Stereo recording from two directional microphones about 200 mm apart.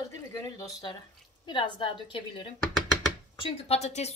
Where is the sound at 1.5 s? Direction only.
25° left (ahead or behind).